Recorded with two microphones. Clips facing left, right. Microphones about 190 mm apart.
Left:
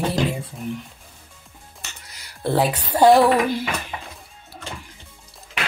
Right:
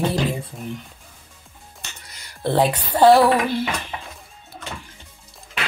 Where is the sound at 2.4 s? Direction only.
10° left (ahead or behind).